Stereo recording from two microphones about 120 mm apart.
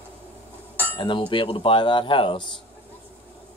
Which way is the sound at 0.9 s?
45° left (ahead or behind).